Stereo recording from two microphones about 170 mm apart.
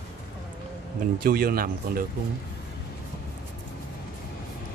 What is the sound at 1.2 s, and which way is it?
Speech, 60° right (ahead or behind).